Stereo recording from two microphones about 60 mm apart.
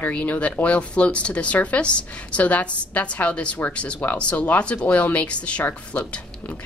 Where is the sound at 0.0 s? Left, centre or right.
Left.